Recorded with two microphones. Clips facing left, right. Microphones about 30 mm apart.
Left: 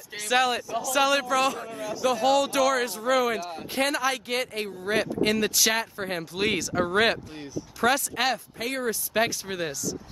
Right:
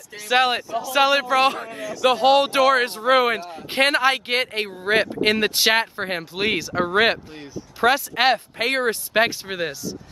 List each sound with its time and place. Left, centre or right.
0.6 s speech: right
2.0 s speech: right
8.2 s speech: right
9.1 s speech: right